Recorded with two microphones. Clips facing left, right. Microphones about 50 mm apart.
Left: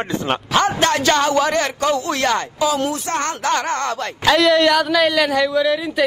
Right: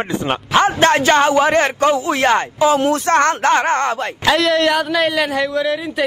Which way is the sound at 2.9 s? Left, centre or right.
Right.